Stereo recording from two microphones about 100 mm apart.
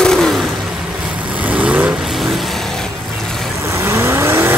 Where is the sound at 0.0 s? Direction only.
5° left (ahead or behind).